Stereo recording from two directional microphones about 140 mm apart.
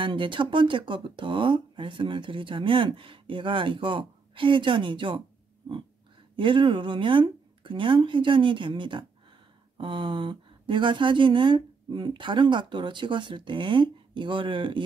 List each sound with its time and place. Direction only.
0.0 s speech: 35° right (ahead or behind)
6.3 s speech: 35° right (ahead or behind)